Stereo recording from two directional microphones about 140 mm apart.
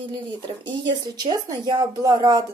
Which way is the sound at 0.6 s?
30° right (ahead or behind).